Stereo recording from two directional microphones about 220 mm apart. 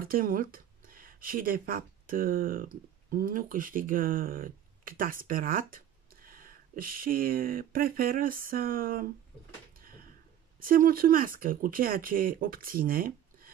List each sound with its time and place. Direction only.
0.0 s speech: 40° right (ahead or behind)
9.8 s a sound: 40° right (ahead or behind)
10.6 s speech: 40° right (ahead or behind)